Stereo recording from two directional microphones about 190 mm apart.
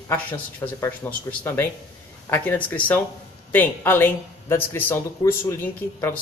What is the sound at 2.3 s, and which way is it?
A woman's voice, 10° left (ahead or behind).